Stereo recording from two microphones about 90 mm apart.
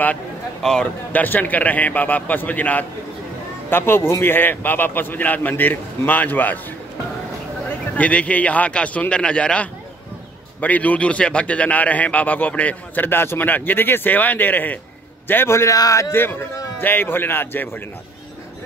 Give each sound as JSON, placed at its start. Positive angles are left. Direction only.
{"t": 0.6, "sound": "a man's voice", "side_deg": 5}
{"t": 1.1, "sound": "a man's voice", "side_deg": 20}
{"t": 7.9, "sound": "a man's voice", "side_deg": 15}